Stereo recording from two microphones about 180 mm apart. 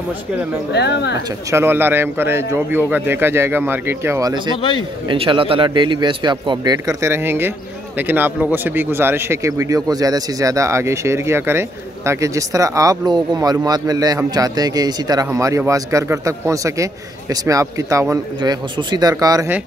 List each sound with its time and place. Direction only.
0.7 s speech: 70° left (ahead or behind)
1.5 s speech: 15° right (ahead or behind)
4.6 s a man's voice: 30° left (ahead or behind)
5.0 s a man's voice: 30° right (ahead or behind)